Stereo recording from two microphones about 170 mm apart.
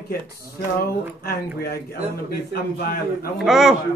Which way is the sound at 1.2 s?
65° left (ahead or behind).